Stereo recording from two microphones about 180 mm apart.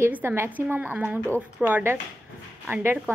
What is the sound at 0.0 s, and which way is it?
A woman's voice, 10° right (ahead or behind).